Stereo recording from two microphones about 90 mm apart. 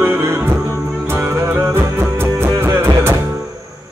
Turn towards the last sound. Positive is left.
turn(degrees=-25)  # may be behind; listen again after turning